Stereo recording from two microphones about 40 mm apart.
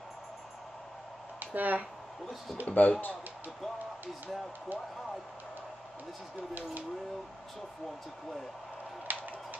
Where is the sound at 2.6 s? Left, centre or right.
Left.